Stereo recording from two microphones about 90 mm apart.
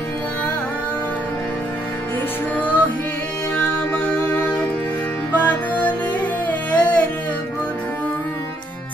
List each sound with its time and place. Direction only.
2.5 s music: 20° left (ahead or behind)